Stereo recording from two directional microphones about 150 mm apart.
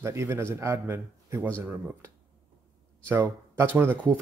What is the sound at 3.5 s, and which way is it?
Speech, 15° right (ahead or behind).